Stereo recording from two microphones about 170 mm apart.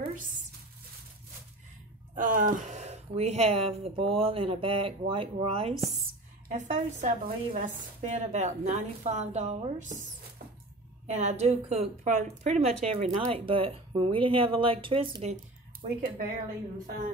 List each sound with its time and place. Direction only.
2.1 s speech: 55° right (ahead or behind)
11.1 s speech: 40° right (ahead or behind)
15.2 s speech: 45° right (ahead or behind)